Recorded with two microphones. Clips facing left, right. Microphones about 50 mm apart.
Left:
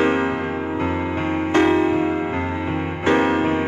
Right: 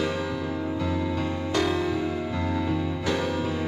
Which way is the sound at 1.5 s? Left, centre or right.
Left.